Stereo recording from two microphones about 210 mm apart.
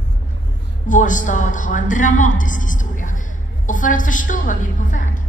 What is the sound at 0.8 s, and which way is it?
A woman's voice, 35° left (ahead or behind).